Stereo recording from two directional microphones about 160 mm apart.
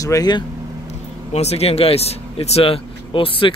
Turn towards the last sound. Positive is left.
turn(degrees=35)  # may be behind; listen again after turning